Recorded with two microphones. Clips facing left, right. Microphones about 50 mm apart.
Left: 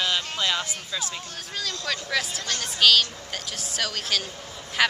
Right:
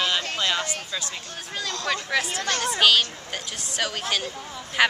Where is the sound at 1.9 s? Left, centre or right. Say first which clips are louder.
Right 3 dB; centre.